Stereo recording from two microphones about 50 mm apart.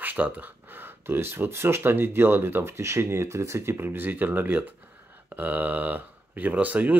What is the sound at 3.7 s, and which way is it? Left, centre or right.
Speech, right.